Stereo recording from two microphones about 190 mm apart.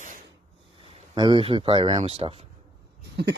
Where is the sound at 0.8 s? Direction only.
25° right (ahead or behind).